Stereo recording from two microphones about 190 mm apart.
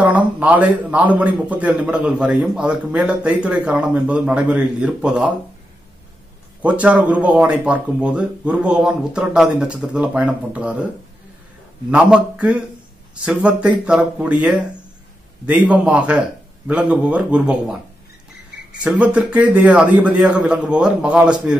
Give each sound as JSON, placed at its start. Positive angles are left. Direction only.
{"t": 0.0, "sound": "a man's voice", "side_deg": -5}
{"t": 6.6, "sound": "a man's voice", "side_deg": -5}
{"t": 11.9, "sound": "a man's voice", "side_deg": -5}